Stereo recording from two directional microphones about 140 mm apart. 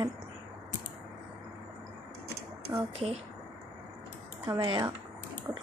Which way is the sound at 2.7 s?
25° right (ahead or behind).